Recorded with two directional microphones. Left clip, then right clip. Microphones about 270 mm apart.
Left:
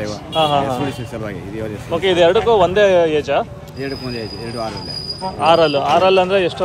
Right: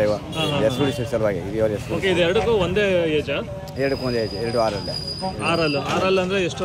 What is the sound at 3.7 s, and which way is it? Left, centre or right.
Speech, centre.